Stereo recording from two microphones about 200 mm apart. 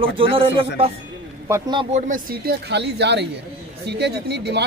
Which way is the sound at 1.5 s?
20° right (ahead or behind).